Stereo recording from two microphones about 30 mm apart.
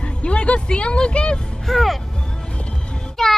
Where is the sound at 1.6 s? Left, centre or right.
Centre.